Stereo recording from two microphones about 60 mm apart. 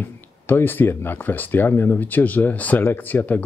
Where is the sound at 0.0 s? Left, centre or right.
Left.